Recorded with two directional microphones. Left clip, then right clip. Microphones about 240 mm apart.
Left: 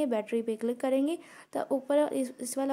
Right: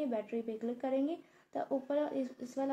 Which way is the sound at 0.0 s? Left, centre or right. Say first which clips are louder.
Left 7 dB; left.